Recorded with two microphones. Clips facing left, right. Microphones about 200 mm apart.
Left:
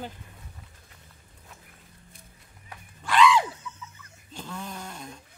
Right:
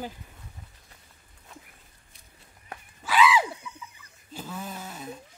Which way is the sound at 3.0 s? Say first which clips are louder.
Left 1 dB; 5° right (ahead or behind).